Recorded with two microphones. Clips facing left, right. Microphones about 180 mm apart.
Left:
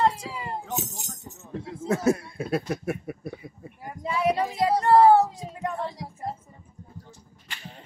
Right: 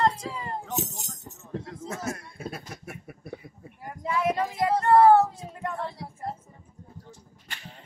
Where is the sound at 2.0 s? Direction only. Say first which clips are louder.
Left 10 dB; 70° left (ahead or behind).